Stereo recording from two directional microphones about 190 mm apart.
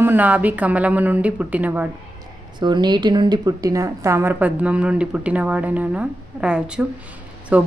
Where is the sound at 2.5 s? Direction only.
25° right (ahead or behind).